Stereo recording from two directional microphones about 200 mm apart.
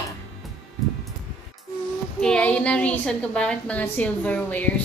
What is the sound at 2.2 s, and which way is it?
A woman's voice, 5° left (ahead or behind).